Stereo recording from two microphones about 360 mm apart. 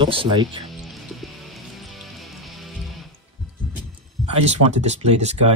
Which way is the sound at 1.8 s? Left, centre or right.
Centre.